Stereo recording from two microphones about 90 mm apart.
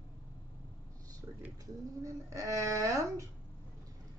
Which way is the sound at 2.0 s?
35° right (ahead or behind).